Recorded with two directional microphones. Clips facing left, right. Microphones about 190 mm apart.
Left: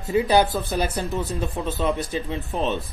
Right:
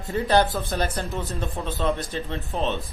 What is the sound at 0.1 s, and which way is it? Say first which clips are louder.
A man's voice: left 2 dB; 10° left (ahead or behind).